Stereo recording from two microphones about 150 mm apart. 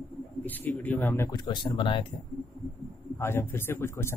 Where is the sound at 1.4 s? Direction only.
30° left (ahead or behind).